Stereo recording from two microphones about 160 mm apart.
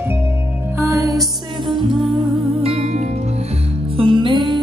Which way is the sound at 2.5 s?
40° right (ahead or behind).